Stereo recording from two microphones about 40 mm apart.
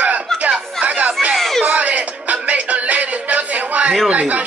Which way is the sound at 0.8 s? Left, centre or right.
Right.